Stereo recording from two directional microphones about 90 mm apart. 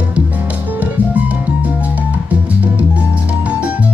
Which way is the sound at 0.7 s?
15° right (ahead or behind).